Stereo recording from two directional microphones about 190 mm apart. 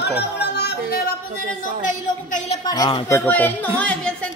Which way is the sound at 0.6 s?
60° left (ahead or behind).